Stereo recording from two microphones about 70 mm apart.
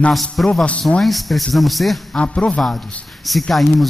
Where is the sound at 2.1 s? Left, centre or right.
Centre.